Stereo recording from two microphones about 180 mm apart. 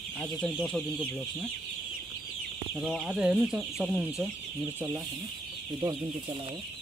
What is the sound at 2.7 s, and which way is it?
Speech, centre (ahead or behind).